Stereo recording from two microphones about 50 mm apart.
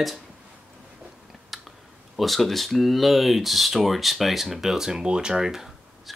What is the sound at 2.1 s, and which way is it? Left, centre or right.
Speech, centre.